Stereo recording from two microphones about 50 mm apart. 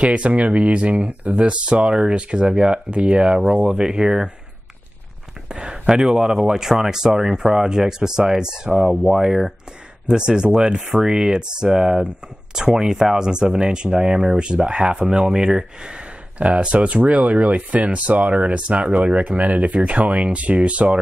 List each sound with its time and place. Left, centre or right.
0.0 s speech: right
5.5 s speech: centre
10.8 s speech: centre; by 21.0 s right